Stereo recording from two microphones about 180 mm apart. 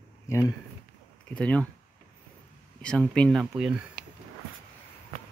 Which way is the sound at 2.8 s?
5° left (ahead or behind).